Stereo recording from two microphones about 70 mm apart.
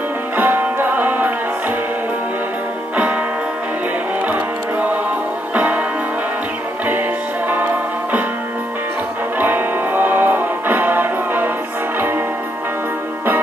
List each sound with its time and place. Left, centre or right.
0.4 s music: right
4.3 s music: right
7.4 s music: right
9.4 s music: right